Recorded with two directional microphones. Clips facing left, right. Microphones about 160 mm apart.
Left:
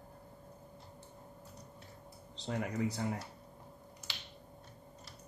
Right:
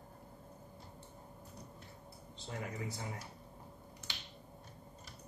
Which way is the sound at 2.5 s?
75° left (ahead or behind).